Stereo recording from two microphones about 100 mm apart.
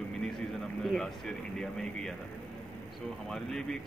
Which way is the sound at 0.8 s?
5° left (ahead or behind).